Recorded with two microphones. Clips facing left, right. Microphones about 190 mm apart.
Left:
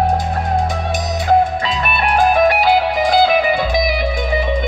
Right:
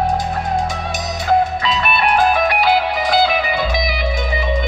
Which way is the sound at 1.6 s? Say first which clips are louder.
Right 1 dB; 45° left (ahead or behind).